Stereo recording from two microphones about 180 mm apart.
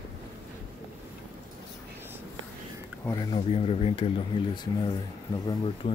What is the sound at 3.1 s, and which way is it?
Speech, 25° left (ahead or behind).